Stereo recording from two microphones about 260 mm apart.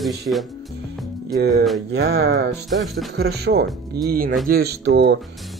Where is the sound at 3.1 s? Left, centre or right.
Right.